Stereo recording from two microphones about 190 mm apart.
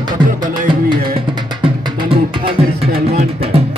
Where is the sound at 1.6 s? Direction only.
30° right (ahead or behind).